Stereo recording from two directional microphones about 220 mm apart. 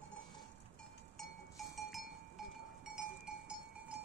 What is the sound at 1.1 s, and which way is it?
Cowbell, centre (ahead or behind).